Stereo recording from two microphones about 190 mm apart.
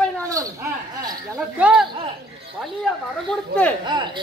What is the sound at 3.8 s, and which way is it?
Speech, 25° right (ahead or behind).